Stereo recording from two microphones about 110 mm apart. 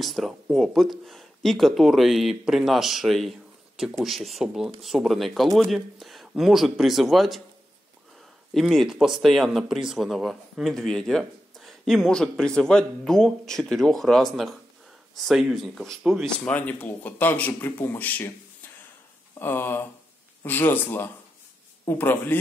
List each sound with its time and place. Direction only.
0.0 s speech: centre (ahead or behind)
8.5 s speech: centre (ahead or behind)
16.4 s a man's voice: 15° left (ahead or behind)